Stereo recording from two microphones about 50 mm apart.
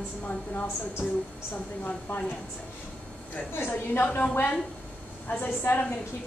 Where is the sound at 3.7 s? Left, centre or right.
Left.